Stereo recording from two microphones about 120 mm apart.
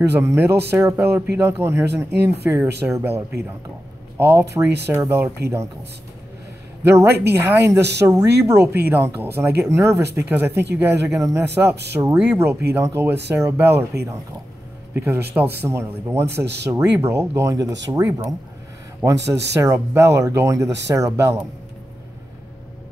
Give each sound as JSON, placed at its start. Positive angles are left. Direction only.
{"t": 0.2, "sound": "speech", "side_deg": -20}
{"t": 6.8, "sound": "speech", "side_deg": -20}
{"t": 19.0, "sound": "speech", "side_deg": -25}